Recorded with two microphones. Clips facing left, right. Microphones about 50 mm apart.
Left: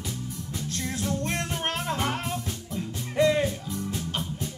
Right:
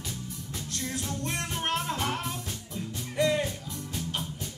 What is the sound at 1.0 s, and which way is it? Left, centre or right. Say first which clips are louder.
Music: left 6 dB; left.